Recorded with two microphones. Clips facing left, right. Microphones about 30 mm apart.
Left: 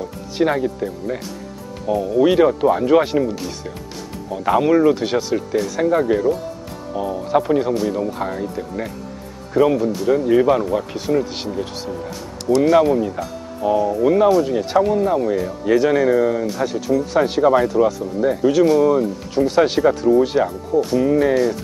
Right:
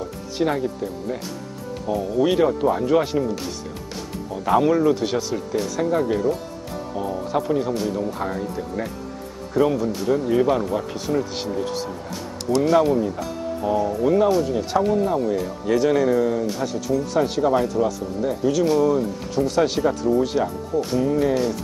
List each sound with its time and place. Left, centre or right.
0.4 s speech: centre
1.9 s speech: centre
12.9 s speech: centre